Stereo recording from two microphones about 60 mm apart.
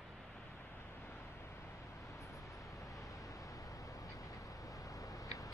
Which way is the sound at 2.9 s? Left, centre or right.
Left.